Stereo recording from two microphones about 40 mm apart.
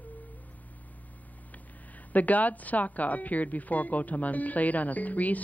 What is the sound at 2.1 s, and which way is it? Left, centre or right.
Speech, left.